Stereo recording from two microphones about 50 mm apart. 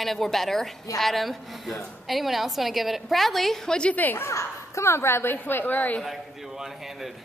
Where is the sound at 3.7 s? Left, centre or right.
Centre.